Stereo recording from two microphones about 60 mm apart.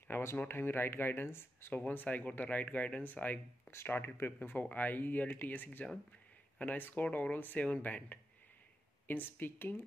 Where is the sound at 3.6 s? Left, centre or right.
Left.